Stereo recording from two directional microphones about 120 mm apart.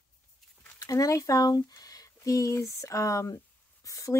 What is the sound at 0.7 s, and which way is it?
Speech, 30° left (ahead or behind).